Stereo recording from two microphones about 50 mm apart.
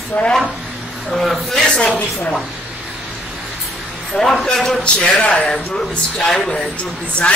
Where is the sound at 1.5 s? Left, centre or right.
Centre.